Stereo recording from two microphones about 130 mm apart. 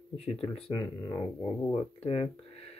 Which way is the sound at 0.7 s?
30° left (ahead or behind).